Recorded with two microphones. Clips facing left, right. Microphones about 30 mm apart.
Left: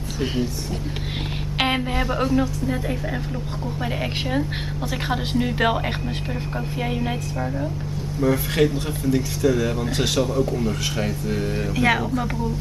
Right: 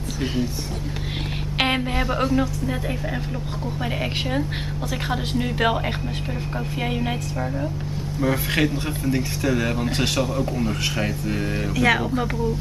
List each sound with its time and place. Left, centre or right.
1.6 s a woman's voice: centre
5.1 s a woman's voice: centre
8.2 s speech: centre
10.4 s speech: centre
11.7 s a woman's voice: centre